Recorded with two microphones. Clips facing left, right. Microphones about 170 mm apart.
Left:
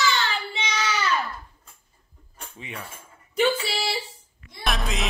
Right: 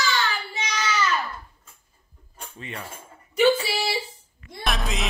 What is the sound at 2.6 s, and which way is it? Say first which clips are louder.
Speech: right 1 dB; 10° left (ahead or behind).